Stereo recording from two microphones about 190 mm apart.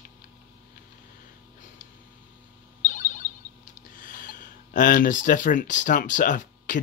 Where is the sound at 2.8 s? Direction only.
40° left (ahead or behind).